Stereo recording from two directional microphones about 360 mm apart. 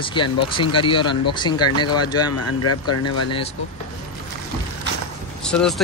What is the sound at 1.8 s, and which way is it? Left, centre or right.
Speech, left.